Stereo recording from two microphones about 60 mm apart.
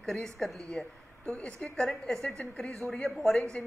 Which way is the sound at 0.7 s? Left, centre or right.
Centre.